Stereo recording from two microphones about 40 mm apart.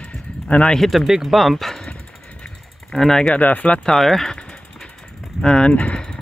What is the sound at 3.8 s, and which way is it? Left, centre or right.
Speech, centre.